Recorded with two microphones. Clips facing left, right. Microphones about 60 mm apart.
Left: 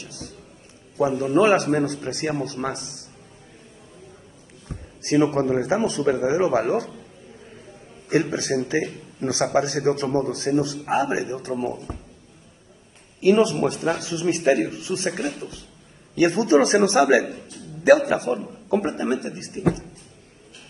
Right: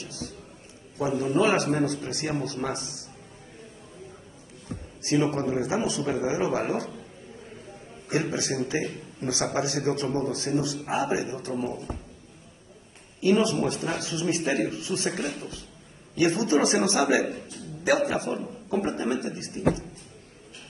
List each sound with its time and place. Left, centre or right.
0.0 s a sound: left
0.9 s a man's voice: left
4.6 s a man's voice: left
8.1 s a man's voice: left
13.2 s a man's voice: left